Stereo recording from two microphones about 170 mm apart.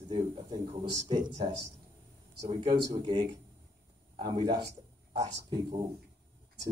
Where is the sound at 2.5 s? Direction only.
25° right (ahead or behind).